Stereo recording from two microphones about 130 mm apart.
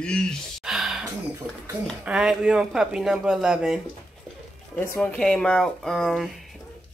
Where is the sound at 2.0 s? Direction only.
5° right (ahead or behind).